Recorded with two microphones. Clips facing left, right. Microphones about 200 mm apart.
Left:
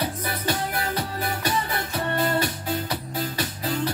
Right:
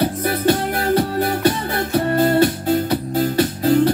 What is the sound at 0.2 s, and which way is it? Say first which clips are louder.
Music: right 10 dB; 50° right (ahead or behind).